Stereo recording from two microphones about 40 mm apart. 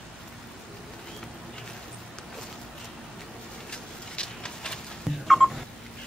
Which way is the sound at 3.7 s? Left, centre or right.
Left.